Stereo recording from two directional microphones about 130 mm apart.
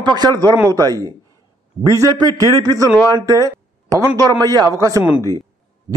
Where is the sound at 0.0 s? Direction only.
30° right (ahead or behind).